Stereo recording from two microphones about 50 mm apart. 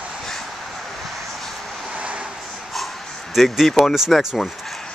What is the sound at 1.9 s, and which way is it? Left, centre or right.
Vehicle, right.